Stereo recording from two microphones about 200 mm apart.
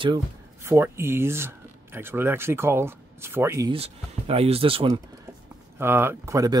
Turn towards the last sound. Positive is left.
turn(degrees=-15)  # may be behind; listen again after turning